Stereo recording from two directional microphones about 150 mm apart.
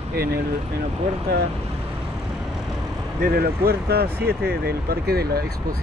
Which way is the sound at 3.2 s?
90° right.